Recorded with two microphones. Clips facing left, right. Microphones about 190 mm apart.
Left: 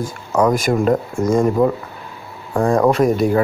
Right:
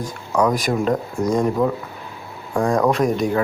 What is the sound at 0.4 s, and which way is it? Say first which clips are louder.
Speech: left 3 dB; centre (ahead or behind).